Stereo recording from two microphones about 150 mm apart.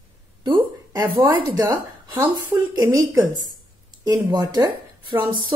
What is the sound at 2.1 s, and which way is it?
Speech, 15° right (ahead or behind).